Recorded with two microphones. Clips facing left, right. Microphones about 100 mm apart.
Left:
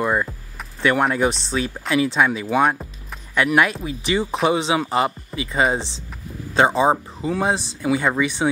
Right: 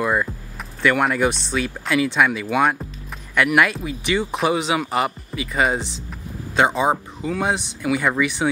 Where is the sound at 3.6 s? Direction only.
30° left (ahead or behind).